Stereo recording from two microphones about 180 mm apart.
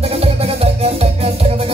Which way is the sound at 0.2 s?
35° right (ahead or behind).